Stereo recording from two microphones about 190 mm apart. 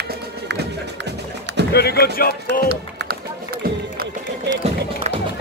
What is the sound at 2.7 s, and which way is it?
Run, 55° right (ahead or behind).